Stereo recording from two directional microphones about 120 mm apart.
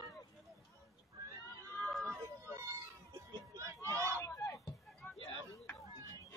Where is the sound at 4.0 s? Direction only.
20° left (ahead or behind).